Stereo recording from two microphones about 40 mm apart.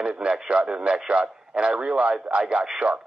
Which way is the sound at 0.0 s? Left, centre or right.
Right.